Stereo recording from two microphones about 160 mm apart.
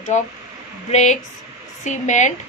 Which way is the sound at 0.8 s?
45° left (ahead or behind).